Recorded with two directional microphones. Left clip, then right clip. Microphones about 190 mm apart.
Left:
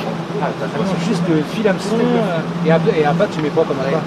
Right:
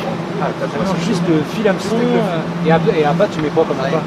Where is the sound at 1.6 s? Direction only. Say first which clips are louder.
Right 1 dB; 10° left (ahead or behind).